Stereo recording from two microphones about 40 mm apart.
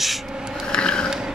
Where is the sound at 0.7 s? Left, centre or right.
Left.